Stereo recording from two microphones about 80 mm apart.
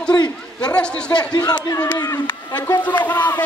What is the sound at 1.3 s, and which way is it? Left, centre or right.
Speech, left.